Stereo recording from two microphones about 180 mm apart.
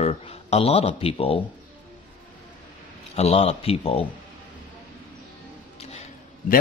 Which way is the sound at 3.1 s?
35° left (ahead or behind).